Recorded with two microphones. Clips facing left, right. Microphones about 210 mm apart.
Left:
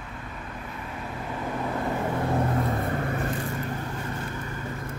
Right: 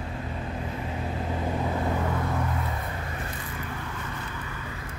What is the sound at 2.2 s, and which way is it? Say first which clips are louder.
Vehicle: left 5 dB; 35° left (ahead or behind).